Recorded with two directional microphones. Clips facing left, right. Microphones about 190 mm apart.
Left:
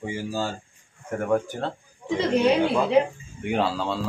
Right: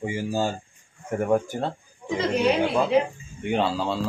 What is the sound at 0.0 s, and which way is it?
Speech, 15° right (ahead or behind).